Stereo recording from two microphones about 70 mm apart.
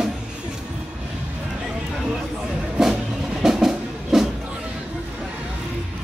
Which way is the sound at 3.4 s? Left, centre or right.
Centre.